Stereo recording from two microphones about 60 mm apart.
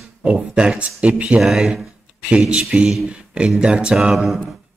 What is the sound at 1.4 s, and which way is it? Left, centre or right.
Speech, centre.